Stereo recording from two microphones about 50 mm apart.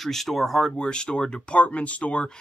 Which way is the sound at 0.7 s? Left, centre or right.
Centre.